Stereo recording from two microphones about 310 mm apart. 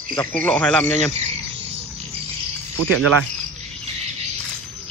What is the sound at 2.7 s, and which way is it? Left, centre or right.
Speech, right.